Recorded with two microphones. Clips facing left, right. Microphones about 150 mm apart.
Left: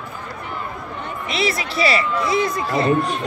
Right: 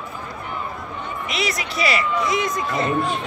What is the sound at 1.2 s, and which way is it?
Speech, 30° left (ahead or behind).